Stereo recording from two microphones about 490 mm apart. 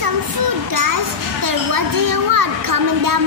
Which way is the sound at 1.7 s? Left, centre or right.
Right.